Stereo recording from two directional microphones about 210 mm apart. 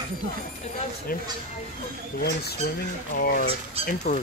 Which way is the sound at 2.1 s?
50° left (ahead or behind).